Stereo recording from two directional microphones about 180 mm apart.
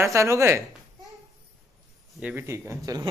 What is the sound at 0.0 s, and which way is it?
Speech, 15° right (ahead or behind).